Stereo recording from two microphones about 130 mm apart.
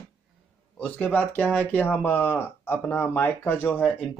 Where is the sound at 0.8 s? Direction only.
10° left (ahead or behind).